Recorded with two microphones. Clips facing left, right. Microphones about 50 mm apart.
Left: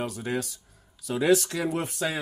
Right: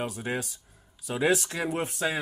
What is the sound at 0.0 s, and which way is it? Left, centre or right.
Speech, centre.